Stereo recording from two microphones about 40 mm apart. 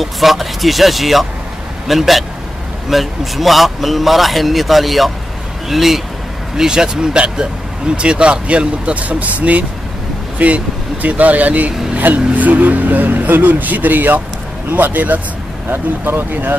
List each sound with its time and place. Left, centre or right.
0.0 s speech: centre
6.5 s speech: centre; by 15.1 s right
15.7 s speech: right